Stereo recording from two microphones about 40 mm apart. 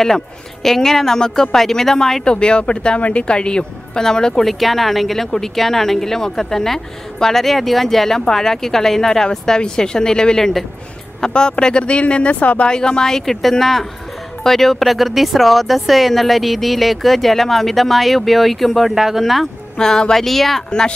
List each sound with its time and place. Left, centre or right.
0.0 s speech: centre
2.2 s speech: left
4.5 s speech: centre; by 12.6 s left
12.6 s speech: left; by 19.5 s centre
19.8 s speech: centre
20.2 s speech: centre